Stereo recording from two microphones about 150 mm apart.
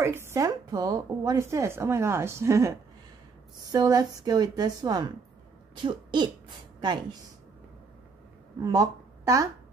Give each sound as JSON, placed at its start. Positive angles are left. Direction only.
{"t": 0.0, "sound": "speech", "side_deg": -15}
{"t": 3.7, "sound": "speech", "side_deg": -25}
{"t": 8.6, "sound": "a woman's voice", "side_deg": -25}